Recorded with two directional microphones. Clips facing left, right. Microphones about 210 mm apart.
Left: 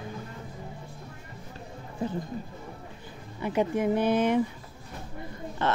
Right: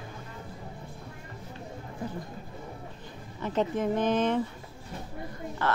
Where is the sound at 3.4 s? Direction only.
10° left (ahead or behind).